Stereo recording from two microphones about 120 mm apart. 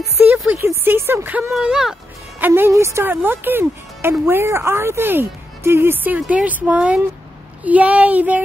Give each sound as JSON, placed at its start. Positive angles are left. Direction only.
{"t": 0.5, "sound": "speech", "side_deg": -20}
{"t": 1.5, "sound": "speech", "side_deg": -5}
{"t": 2.4, "sound": "speech", "side_deg": -20}